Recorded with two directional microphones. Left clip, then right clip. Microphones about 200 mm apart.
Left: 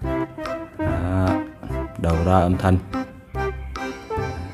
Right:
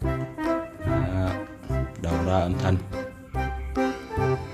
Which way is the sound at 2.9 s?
Centre (ahead or behind).